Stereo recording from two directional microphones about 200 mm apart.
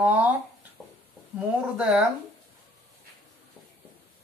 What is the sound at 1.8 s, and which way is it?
Speech, centre (ahead or behind).